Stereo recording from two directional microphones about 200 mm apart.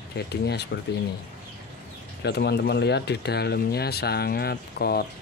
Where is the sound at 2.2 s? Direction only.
55° left (ahead or behind).